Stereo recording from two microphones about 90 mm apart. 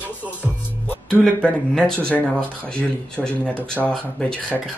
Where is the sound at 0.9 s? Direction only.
10° left (ahead or behind).